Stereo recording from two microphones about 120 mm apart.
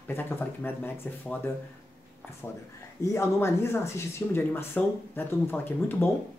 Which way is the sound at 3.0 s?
20° left (ahead or behind).